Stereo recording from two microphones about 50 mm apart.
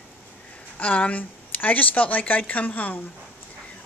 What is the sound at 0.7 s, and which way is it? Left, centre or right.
A woman's voice, left.